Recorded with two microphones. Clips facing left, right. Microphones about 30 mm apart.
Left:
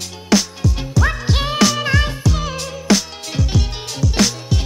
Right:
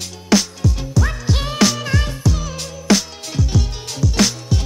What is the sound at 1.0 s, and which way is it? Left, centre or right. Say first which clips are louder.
Music: left 3 dB; centre.